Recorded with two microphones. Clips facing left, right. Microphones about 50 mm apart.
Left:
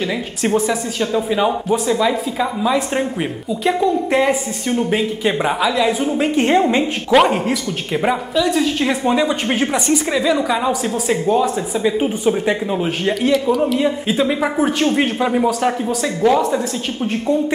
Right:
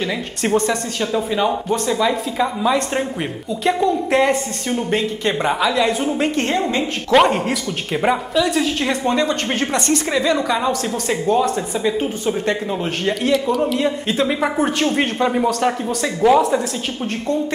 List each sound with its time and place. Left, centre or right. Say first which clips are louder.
0.4 s a woman's voice: even; centre
6.4 s a woman's voice: left 5 dB; centre
7.1 s a woman's voice: even; centre